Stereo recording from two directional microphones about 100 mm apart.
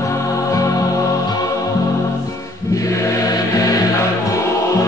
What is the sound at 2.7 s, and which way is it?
Music, 35° left (ahead or behind).